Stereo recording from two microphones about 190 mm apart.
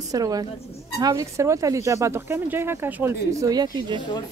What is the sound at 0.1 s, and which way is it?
Speech, 20° right (ahead or behind).